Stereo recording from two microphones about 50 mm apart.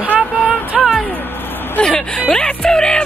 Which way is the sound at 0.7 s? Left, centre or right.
Centre.